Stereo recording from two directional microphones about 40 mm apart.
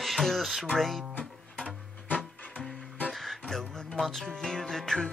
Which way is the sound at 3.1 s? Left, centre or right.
Centre.